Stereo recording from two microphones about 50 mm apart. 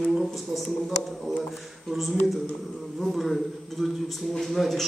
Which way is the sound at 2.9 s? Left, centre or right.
Centre.